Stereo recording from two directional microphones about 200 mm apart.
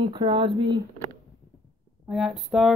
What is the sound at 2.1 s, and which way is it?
Speech, centre (ahead or behind).